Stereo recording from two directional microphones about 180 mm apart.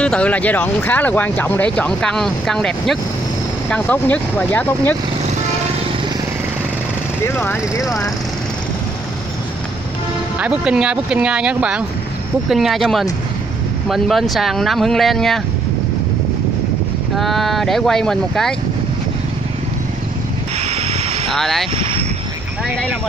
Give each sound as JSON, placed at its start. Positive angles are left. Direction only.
{"t": 0.0, "sound": "speech", "side_deg": 5}
{"t": 7.2, "sound": "speech", "side_deg": 15}
{"t": 10.4, "sound": "speech", "side_deg": -5}
{"t": 17.2, "sound": "speech", "side_deg": 0}
{"t": 20.7, "sound": "vehicle", "side_deg": -35}
{"t": 21.3, "sound": "speech", "side_deg": 0}